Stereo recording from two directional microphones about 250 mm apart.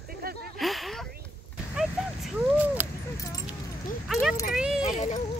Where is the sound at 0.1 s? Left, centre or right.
Right.